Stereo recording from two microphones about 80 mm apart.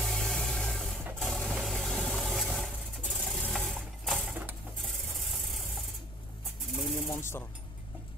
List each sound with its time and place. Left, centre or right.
0.0 s a sound: centre
4.8 s rub: centre
6.7 s snake: centre
7.1 s speech: left